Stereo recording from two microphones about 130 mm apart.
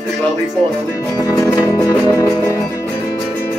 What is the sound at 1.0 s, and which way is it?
Music, 25° left (ahead or behind).